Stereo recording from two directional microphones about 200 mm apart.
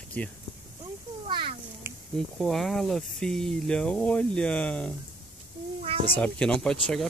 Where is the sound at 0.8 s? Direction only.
25° right (ahead or behind).